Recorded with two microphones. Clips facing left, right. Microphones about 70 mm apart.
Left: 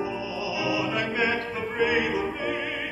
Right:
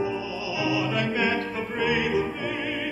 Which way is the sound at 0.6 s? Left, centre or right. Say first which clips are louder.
Right 2 dB; centre.